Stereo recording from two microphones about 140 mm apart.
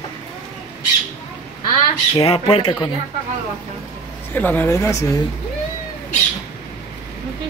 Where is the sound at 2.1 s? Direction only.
40° left (ahead or behind).